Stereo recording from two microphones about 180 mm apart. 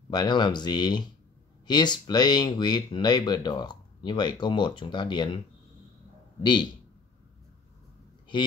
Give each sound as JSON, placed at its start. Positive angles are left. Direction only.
{"t": 0.1, "sound": "speech", "side_deg": 25}
{"t": 6.4, "sound": "speech", "side_deg": 25}